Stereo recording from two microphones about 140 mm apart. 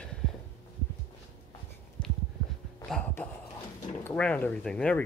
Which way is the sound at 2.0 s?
5° left (ahead or behind).